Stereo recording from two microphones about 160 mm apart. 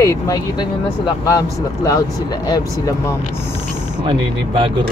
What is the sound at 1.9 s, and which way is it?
Speech, 25° left (ahead or behind).